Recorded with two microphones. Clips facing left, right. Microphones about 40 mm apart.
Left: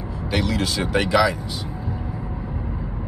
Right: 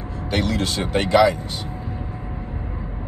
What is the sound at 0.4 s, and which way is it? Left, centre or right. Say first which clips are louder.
Speech: even; right.